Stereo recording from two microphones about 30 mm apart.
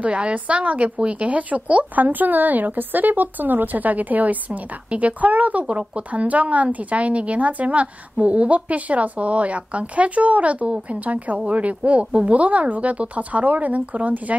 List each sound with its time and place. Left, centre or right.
0.0 s speech: right
2.0 s speech: right
4.5 s speech: right
12.4 s speech: right